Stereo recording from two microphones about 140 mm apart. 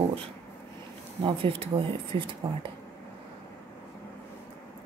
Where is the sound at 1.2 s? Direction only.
35° right (ahead or behind).